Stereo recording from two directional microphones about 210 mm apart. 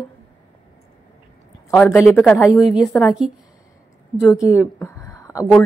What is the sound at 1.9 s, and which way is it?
A woman's voice, 10° left (ahead or behind).